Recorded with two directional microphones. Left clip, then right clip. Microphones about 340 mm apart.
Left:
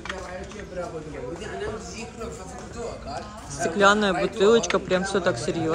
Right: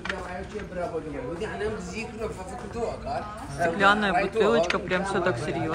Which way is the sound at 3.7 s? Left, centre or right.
Centre.